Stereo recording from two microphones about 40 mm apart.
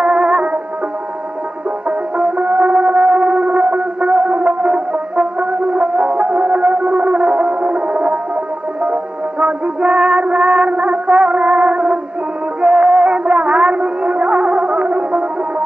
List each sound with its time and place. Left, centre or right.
0.0 s music: centre
1.9 s music: centre